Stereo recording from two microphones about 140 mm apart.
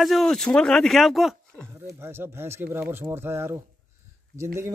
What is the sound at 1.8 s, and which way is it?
Speech, 15° right (ahead or behind).